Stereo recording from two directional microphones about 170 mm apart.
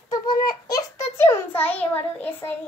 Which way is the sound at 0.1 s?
25° left (ahead or behind).